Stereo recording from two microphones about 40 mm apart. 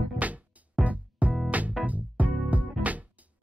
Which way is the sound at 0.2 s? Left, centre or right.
Right.